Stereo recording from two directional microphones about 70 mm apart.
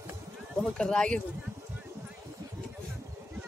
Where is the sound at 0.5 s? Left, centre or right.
Centre.